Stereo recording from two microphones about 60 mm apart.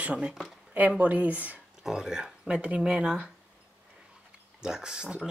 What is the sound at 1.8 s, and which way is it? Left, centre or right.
Speech, centre.